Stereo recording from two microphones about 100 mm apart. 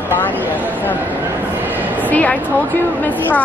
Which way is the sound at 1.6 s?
20° right (ahead or behind).